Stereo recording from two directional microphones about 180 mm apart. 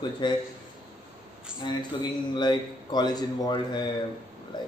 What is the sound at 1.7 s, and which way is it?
A man's voice, 25° left (ahead or behind).